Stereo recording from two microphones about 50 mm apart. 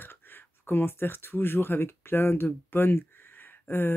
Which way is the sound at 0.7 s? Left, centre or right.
Left.